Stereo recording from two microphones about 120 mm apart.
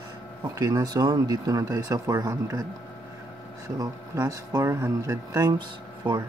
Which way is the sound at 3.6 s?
30° right (ahead or behind).